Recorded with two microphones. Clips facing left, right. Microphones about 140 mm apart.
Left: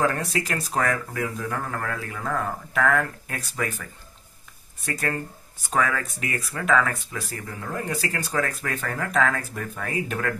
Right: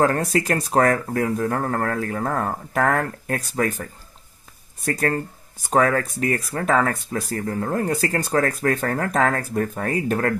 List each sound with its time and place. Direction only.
0.0 s speech: 45° right (ahead or behind)